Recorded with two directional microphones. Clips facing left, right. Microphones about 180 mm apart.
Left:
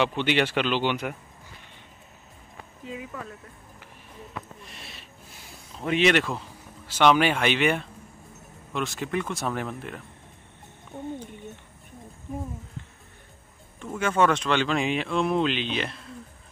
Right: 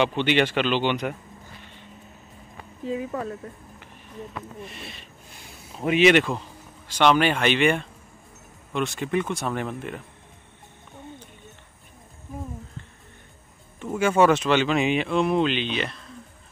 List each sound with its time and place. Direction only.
0.0 s speech: 5° left (ahead or behind)
2.9 s speech: 35° right (ahead or behind)
4.6 s speech: centre (ahead or behind)
13.9 s speech: 10° right (ahead or behind)